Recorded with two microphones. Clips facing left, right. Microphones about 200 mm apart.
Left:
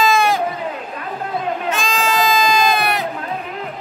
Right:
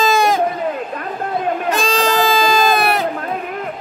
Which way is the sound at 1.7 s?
35° right (ahead or behind).